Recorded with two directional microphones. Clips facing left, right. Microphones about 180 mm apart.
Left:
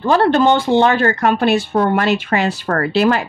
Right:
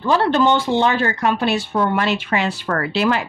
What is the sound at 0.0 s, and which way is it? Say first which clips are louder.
Speech: left 3 dB; 55° left (ahead or behind).